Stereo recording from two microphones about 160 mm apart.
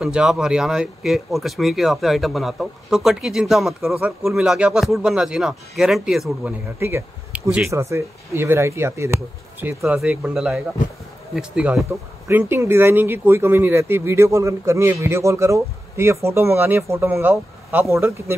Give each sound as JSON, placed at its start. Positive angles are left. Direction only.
{"t": 0.0, "sound": "speech", "side_deg": -5}
{"t": 6.8, "sound": "speech", "side_deg": -15}